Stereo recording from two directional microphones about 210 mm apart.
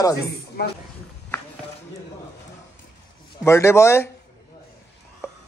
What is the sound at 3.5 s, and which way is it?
Speech, 10° left (ahead or behind).